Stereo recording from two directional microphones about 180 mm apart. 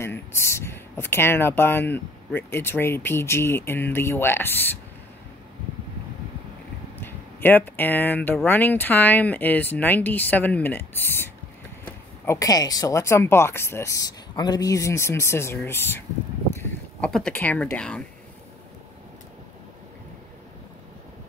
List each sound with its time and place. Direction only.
0.0 s speech: 15° left (ahead or behind)
7.0 s speech: 10° left (ahead or behind)